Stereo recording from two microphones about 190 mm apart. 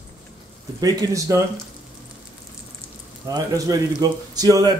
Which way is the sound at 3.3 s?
20° right (ahead or behind).